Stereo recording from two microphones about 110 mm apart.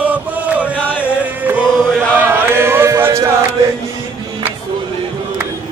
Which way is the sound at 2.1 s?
20° right (ahead or behind).